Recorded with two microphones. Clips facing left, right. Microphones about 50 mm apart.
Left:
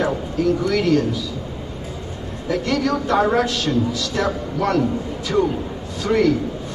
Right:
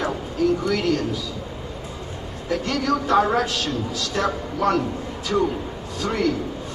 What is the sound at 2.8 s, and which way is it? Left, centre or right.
A man's voice, centre.